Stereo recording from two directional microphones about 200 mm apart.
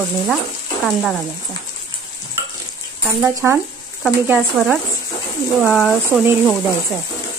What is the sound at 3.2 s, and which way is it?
Speech, 15° right (ahead or behind).